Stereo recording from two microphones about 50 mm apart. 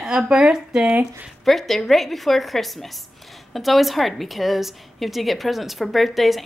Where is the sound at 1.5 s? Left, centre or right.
Centre.